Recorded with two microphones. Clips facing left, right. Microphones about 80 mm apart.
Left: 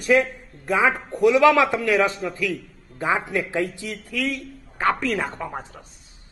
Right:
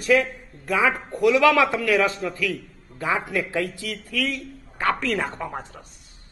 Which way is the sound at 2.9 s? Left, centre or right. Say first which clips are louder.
Left 1 dB; left.